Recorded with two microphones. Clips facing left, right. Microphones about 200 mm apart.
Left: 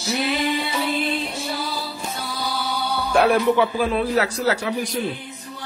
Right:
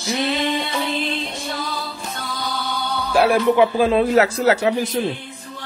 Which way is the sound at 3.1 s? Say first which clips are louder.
Right 1 dB; 10° right (ahead or behind).